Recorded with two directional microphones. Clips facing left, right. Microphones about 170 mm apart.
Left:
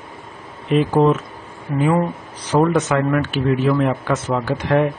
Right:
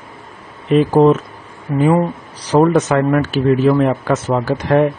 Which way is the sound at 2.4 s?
40° right (ahead or behind).